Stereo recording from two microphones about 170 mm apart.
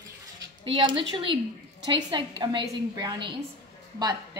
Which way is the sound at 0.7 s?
30° right (ahead or behind).